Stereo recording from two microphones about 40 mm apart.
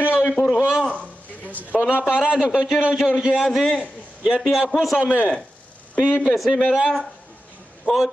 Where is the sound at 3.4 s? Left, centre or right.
Centre.